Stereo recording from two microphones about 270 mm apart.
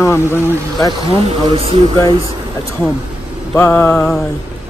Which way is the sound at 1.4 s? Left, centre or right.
Right.